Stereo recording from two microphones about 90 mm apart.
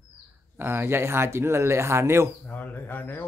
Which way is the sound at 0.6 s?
25° right (ahead or behind).